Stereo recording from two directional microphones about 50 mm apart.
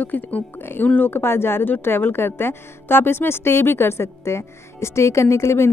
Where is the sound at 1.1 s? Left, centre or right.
Left.